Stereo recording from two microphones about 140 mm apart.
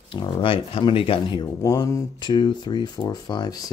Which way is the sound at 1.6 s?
25° left (ahead or behind).